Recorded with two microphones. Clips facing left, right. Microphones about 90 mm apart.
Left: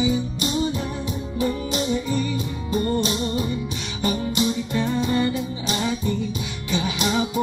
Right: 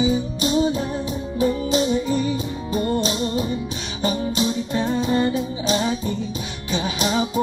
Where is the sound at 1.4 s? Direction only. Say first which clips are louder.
Right 5 dB; 25° right (ahead or behind).